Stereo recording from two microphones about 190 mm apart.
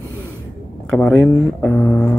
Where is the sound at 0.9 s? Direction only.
5° left (ahead or behind).